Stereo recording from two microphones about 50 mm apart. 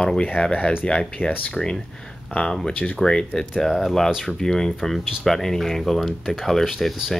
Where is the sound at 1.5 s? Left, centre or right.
Centre.